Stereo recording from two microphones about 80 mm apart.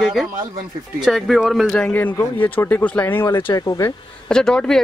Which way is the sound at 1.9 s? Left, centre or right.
Left.